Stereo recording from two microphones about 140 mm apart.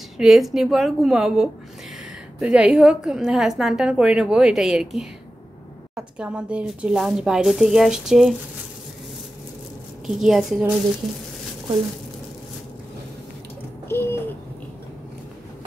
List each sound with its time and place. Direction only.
0.2 s a woman's voice: centre (ahead or behind)
10.0 s a woman's voice: centre (ahead or behind)
13.8 s a sound: 15° left (ahead or behind)